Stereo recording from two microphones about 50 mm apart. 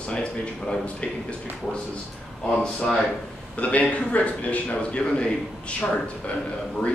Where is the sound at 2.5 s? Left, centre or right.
Centre.